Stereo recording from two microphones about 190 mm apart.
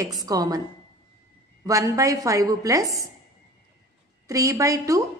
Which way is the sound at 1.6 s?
20° right (ahead or behind).